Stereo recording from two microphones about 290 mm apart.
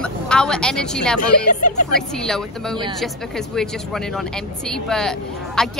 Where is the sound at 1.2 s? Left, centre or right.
Left.